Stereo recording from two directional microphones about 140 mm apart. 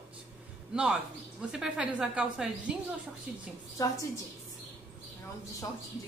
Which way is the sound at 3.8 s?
25° left (ahead or behind).